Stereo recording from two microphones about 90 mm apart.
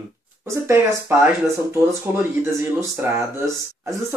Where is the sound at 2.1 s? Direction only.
20° right (ahead or behind).